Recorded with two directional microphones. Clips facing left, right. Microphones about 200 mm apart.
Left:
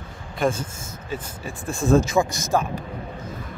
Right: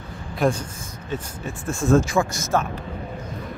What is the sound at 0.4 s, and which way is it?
Speech, centre (ahead or behind).